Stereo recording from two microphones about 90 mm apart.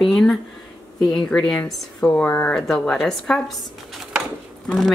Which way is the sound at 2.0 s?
15° left (ahead or behind).